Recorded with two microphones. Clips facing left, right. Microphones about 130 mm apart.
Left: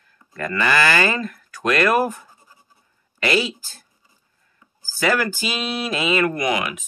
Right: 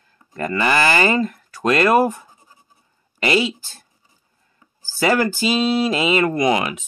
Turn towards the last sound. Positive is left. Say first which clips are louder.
# right 4 dB
turn(degrees=-30)  # may be behind; listen again after turning